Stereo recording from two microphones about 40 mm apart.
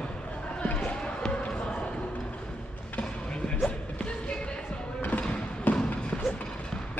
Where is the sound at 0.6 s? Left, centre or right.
Left.